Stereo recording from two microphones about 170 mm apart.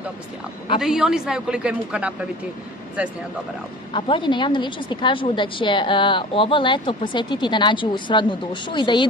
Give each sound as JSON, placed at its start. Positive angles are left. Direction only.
{"t": 0.7, "sound": "a woman's voice", "side_deg": -5}
{"t": 3.9, "sound": "a woman's voice", "side_deg": 30}